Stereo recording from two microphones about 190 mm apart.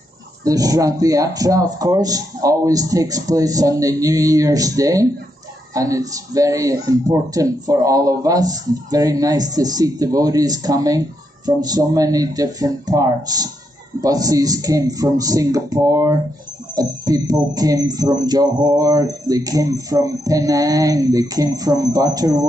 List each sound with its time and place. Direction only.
0.4 s speech: 20° right (ahead or behind)